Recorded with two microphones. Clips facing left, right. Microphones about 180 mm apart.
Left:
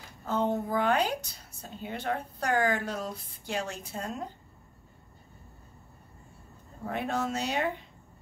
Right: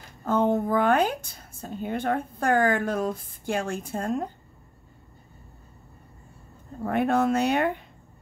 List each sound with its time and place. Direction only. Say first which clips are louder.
0.2 s a woman's voice: right 6 dB; 50° right (ahead or behind)
6.8 s speech: right 8 dB; 55° right (ahead or behind)